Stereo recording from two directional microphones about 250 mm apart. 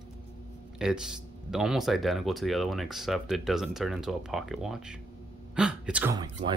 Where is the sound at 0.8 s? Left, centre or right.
Centre.